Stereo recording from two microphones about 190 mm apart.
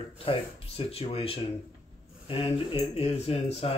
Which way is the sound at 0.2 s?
30° left (ahead or behind).